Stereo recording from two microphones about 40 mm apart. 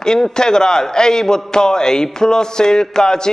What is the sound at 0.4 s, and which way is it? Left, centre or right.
A man's voice, centre.